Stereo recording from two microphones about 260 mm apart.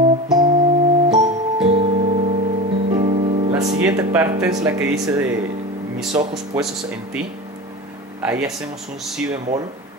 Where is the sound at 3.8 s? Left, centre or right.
Centre.